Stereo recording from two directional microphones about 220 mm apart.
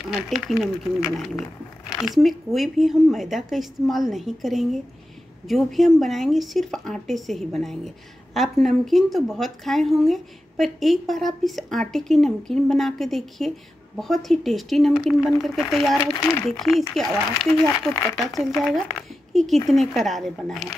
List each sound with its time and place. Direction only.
0.0 s speech: centre (ahead or behind)
16.2 s speech: 15° left (ahead or behind)
16.6 s speech: centre (ahead or behind)